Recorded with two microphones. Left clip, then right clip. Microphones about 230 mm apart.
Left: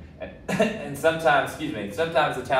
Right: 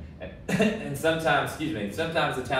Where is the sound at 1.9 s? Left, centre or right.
Centre.